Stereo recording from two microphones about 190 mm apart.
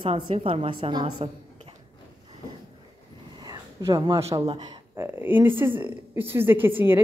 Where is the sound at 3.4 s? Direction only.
20° right (ahead or behind).